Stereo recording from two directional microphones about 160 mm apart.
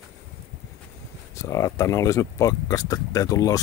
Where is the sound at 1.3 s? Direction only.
20° left (ahead or behind).